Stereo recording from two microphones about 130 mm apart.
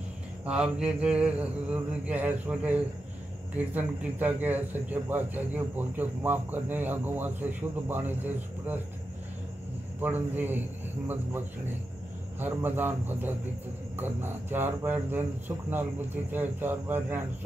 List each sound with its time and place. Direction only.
0.5 s speech: 5° right (ahead or behind)
9.9 s speech: 15° right (ahead or behind)